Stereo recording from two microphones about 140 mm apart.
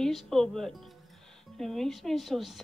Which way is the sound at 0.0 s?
Centre (ahead or behind).